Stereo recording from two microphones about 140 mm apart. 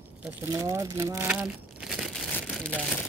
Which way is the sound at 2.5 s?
10° left (ahead or behind).